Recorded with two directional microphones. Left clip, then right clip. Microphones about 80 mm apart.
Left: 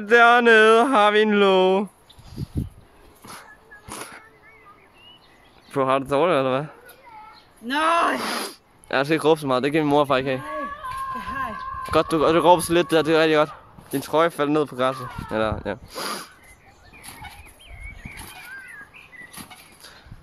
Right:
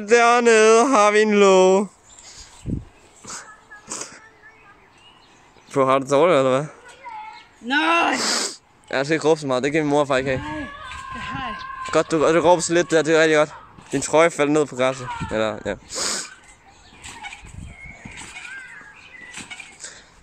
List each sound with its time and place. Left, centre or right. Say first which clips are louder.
0.0 s speech: left 1 dB; centre; by 1.9 s right
2.4 s a sound: left 3 dB; centre
3.3 s a sound: right 4 dB; centre
5.7 s speech: right 3 dB; right
7.6 s speech: right 1 dB; left
8.2 s a sound: right 4 dB; centre
8.8 s speech: even; left
11.2 s a sound: even; left
11.8 s speech: right 1 dB; centre
13.9 s speech: right 4 dB; right
14.6 s speech: right 2 dB; centre
15.9 s speech: right 4 dB; centre